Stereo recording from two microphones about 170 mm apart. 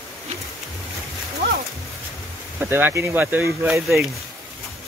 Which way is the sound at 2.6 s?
10° right (ahead or behind).